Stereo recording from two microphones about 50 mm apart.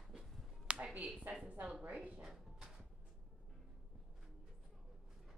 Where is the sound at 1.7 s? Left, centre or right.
Right.